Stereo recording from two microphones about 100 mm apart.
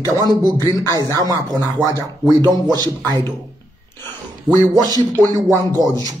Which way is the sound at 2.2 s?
45° right (ahead or behind).